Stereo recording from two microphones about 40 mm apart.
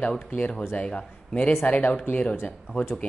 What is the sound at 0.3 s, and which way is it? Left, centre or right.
Speech, left.